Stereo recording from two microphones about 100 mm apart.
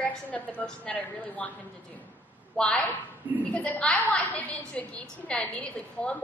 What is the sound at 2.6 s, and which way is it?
A woman's voice, 10° left (ahead or behind).